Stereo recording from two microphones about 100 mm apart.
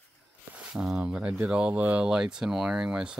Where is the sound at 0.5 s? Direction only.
5° right (ahead or behind).